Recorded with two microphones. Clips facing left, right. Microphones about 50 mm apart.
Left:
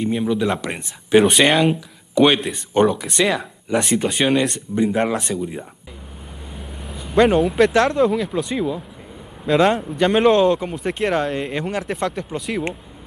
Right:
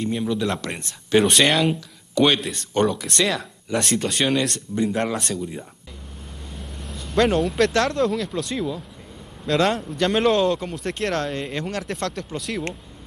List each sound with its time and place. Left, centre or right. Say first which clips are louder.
0.0 s speech: left 4 dB; centre